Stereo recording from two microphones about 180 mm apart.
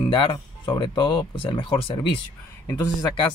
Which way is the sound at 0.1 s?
25° left (ahead or behind).